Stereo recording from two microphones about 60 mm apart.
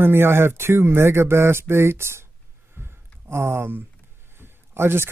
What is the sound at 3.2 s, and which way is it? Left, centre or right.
Speech, right.